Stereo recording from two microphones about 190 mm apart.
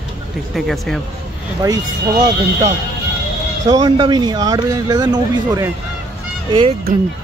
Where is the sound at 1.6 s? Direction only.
20° right (ahead or behind).